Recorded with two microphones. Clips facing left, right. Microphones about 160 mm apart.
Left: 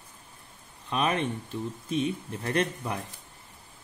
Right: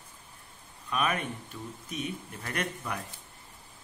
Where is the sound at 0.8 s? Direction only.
30° left (ahead or behind).